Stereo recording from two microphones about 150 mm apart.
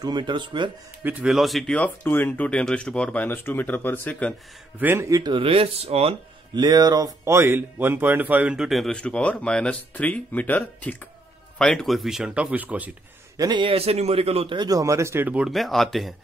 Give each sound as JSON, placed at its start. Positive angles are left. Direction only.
{"t": 0.0, "sound": "speech", "side_deg": -30}
{"t": 1.0, "sound": "speech", "side_deg": -5}
{"t": 4.7, "sound": "speech", "side_deg": -15}
{"t": 6.5, "sound": "speech", "side_deg": -25}
{"t": 13.4, "sound": "a man's voice", "side_deg": -30}